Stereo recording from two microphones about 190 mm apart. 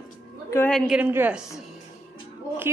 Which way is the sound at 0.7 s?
Centre (ahead or behind).